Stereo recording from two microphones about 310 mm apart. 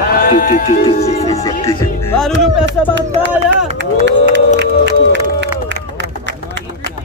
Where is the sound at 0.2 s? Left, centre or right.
Left.